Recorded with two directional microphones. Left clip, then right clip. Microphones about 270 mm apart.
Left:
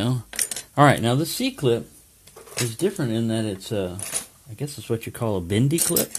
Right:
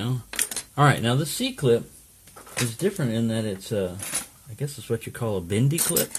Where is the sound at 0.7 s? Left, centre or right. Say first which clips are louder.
Left 4 dB; left.